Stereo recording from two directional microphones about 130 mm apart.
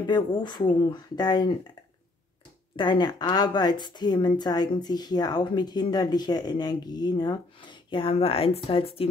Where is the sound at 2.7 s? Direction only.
35° left (ahead or behind).